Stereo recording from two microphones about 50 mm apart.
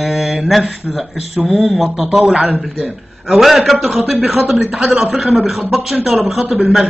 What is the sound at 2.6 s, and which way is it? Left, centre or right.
A man's voice, centre.